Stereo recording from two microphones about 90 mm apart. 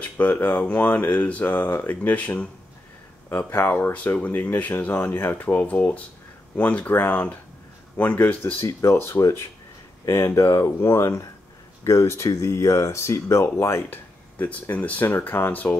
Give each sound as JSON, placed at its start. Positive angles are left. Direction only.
{"t": 0.0, "sound": "speech", "side_deg": 20}
{"t": 8.5, "sound": "speech", "side_deg": 30}